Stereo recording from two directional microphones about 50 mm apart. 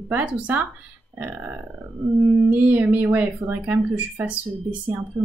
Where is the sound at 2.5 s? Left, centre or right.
Right.